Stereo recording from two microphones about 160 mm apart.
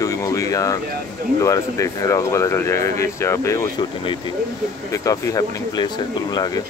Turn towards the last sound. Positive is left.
turn(degrees=25)  # may be behind; listen again after turning